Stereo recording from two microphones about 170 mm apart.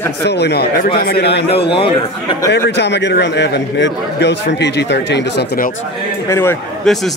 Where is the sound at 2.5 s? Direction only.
90° left.